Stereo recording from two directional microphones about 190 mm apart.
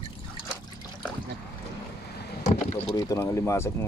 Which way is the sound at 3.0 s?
15° left (ahead or behind).